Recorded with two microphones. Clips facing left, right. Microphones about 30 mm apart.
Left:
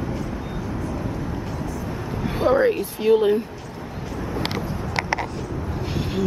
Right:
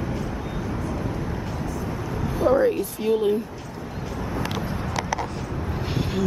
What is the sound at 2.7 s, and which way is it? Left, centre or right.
Speech, left.